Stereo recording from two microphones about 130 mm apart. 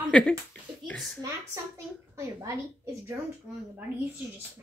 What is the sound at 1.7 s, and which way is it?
Speech, 25° right (ahead or behind).